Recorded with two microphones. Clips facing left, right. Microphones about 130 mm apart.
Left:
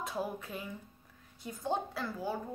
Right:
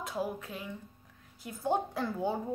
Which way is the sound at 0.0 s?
Centre (ahead or behind).